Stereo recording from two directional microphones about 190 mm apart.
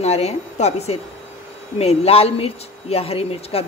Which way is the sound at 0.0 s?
35° left (ahead or behind).